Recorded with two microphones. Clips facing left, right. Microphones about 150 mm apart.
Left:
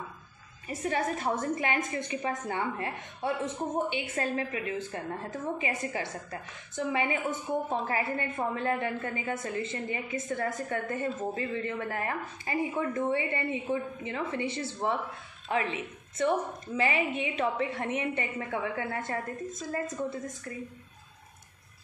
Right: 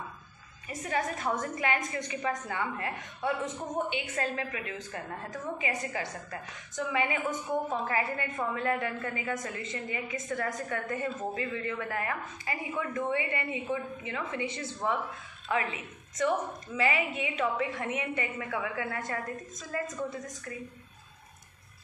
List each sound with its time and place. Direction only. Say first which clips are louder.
0.7 s a woman's voice: left 2 dB; 30° left (ahead or behind)